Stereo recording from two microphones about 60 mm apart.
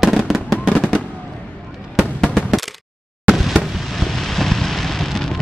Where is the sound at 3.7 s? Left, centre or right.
Centre.